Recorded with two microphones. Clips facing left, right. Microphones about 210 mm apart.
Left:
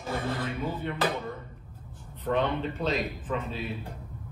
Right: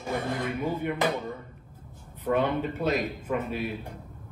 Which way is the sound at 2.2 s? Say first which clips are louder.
Right 2 dB; 10° right (ahead or behind).